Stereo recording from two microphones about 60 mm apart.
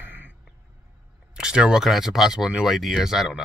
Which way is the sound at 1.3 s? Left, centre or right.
Centre.